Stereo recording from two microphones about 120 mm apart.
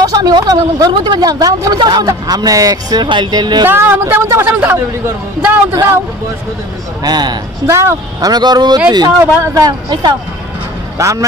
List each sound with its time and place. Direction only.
0.0 s speech: 35° right (ahead or behind)
3.6 s a man's voice: 20° right (ahead or behind)
4.5 s a man's voice: 10° right (ahead or behind)
7.0 s speech: 35° right (ahead or behind)
7.6 s a man's voice: 20° right (ahead or behind)
8.3 s speech: 35° right (ahead or behind)
11.0 s a man's voice: 25° right (ahead or behind)